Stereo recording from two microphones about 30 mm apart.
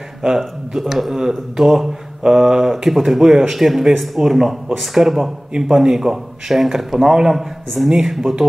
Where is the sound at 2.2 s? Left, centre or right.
Centre.